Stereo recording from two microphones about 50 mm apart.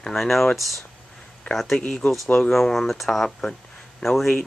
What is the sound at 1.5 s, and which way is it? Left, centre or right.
Speech, centre.